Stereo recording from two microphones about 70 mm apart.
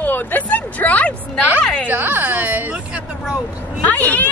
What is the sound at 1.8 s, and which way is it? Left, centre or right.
Speech, right.